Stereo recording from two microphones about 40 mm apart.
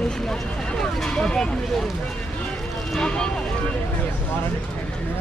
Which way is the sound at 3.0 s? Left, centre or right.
Left.